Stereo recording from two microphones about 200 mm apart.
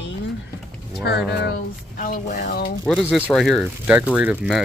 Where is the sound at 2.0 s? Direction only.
40° left (ahead or behind).